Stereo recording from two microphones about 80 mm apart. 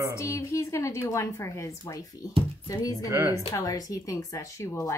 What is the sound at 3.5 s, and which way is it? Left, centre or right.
Speech, left.